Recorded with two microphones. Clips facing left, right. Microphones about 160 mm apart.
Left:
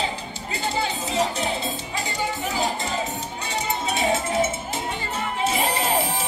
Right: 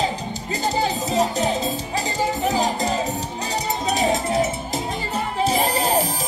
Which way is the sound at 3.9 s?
35° right (ahead or behind).